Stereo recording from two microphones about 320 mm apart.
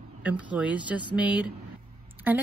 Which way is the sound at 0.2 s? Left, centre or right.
Centre.